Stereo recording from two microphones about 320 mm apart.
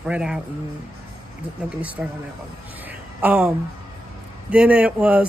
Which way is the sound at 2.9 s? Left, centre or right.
Centre.